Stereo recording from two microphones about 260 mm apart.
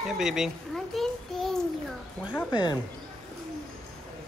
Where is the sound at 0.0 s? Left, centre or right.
Centre.